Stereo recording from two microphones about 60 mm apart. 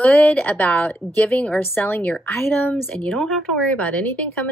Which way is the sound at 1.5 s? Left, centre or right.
Left.